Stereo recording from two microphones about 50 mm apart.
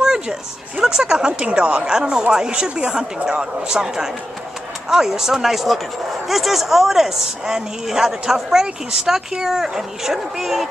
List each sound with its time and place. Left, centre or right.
0.0 s speech: centre